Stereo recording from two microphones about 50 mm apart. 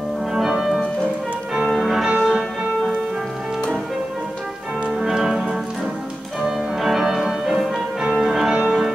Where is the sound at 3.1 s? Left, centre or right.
Centre.